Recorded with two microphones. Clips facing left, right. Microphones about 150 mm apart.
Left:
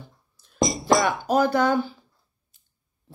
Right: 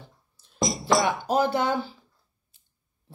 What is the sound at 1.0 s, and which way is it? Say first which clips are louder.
Speech: left 2 dB; 25° right (ahead or behind).